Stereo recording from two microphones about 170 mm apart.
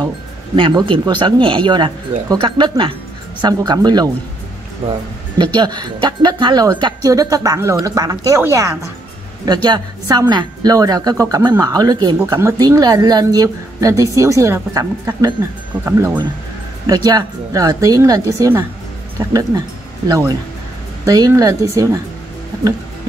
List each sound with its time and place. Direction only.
0.6 s speech: 30° right (ahead or behind)
5.6 s speech: 25° right (ahead or behind)
16.8 s speech: 25° right (ahead or behind)